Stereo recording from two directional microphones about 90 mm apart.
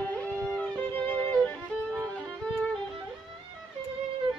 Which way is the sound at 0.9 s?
15° left (ahead or behind).